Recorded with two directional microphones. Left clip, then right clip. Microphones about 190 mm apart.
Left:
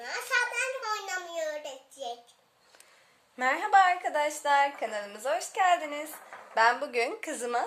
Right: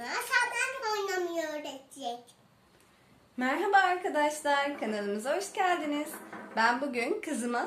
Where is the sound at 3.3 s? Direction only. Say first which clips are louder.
Left 3 dB; 50° left (ahead or behind).